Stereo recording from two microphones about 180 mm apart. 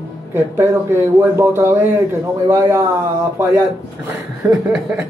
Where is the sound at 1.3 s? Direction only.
15° right (ahead or behind).